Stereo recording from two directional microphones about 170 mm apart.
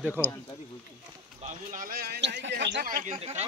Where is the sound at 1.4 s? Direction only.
50° right (ahead or behind).